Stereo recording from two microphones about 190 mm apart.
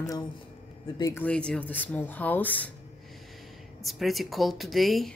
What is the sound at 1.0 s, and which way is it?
Speech, 20° left (ahead or behind).